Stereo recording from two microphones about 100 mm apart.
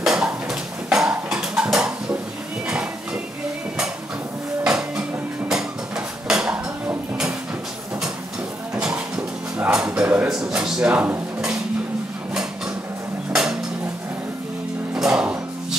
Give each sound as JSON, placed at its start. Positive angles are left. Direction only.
{"t": 0.0, "sound": "music", "side_deg": -5}
{"t": 4.6, "sound": "music", "side_deg": -5}
{"t": 6.2, "sound": "dishes", "side_deg": -10}
{"t": 8.7, "sound": "a sound", "side_deg": -10}
{"t": 10.2, "sound": "a sound", "side_deg": -5}
{"t": 13.3, "sound": "dishes", "side_deg": -5}
{"t": 15.0, "sound": "music", "side_deg": -5}